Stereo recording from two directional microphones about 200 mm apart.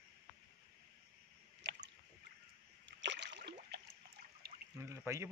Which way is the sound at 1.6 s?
60° right (ahead or behind).